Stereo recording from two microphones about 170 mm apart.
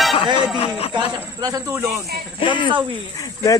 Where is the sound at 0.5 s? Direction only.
35° left (ahead or behind).